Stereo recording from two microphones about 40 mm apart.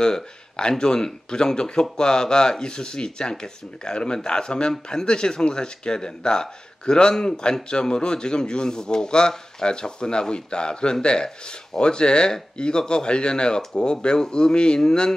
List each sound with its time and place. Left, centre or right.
0.0 s speech: left